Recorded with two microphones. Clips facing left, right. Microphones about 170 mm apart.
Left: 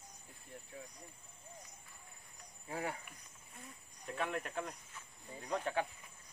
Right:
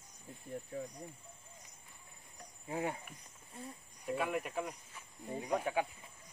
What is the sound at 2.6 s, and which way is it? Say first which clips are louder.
Speech: right 3 dB; 20° right (ahead or behind).